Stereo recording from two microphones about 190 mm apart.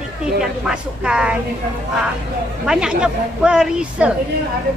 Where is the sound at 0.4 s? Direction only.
5° right (ahead or behind).